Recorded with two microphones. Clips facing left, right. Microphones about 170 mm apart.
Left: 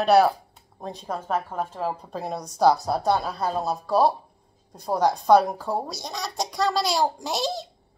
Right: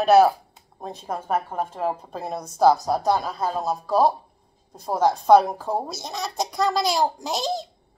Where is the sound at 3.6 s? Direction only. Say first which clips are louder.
Right 1 dB; 20° right (ahead or behind).